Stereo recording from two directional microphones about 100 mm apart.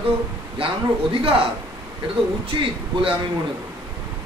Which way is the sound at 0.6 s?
60° right (ahead or behind).